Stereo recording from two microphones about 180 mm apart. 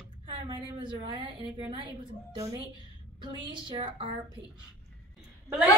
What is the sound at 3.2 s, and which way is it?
Speech, 25° right (ahead or behind).